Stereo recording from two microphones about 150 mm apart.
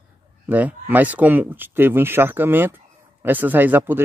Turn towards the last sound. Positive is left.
turn(degrees=-15)  # may be behind; listen again after turning